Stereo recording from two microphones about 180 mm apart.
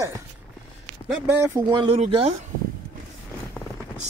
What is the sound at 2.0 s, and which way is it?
Speech, 35° right (ahead or behind).